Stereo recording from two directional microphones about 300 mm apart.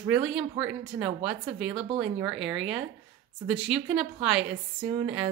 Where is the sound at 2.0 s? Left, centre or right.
Centre.